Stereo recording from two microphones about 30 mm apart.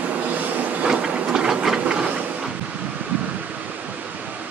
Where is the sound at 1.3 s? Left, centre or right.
Right.